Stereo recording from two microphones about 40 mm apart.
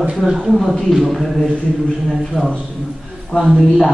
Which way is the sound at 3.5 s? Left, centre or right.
Centre.